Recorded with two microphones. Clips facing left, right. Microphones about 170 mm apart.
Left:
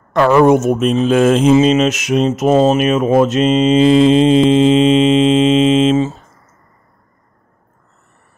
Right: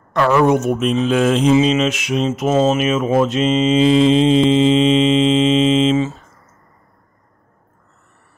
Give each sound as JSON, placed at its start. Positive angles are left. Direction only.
{"t": 0.1, "sound": "speech", "side_deg": 45}
{"t": 3.4, "sound": "mantra", "side_deg": 60}
{"t": 4.1, "sound": "speech", "side_deg": 50}
{"t": 4.5, "sound": "music", "side_deg": 50}